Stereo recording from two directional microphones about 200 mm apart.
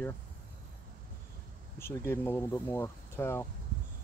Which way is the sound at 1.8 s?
10° left (ahead or behind).